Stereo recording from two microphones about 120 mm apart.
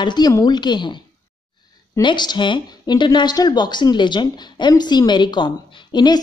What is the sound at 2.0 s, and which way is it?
Speech, 40° left (ahead or behind).